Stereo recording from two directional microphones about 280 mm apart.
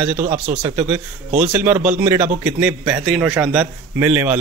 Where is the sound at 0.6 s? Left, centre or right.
Centre.